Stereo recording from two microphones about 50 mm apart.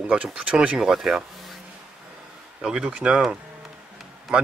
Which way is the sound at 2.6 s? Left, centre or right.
Centre.